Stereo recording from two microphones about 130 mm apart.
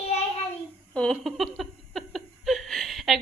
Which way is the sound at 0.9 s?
5° left (ahead or behind).